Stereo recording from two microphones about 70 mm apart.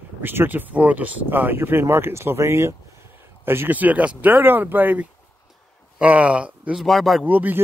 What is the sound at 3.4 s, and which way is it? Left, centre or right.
Speech, right.